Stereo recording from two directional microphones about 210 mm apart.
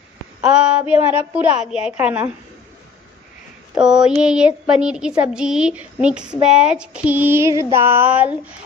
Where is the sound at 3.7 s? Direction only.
5° right (ahead or behind).